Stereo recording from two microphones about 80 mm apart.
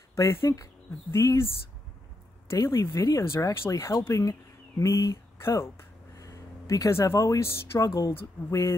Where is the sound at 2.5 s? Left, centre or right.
Left.